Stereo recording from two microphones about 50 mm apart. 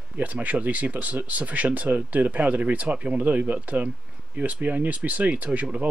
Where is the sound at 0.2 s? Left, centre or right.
Right.